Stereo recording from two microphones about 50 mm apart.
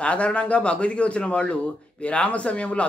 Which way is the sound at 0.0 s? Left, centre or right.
Left.